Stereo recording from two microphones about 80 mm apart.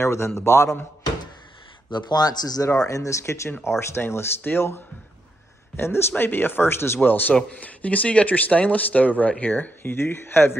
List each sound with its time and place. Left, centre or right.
0.0 s speech: left
1.9 s speech: left
2.8 s speech: left